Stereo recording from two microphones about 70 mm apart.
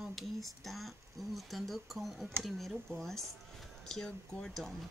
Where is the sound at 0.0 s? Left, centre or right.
Centre.